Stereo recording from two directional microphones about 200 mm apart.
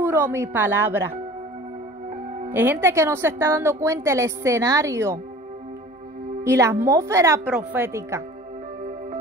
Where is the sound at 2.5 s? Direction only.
10° right (ahead or behind).